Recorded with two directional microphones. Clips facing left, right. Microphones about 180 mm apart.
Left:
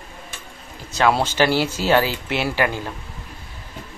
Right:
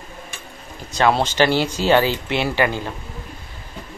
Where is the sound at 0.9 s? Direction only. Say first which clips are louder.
Right 1 dB; 5° left (ahead or behind).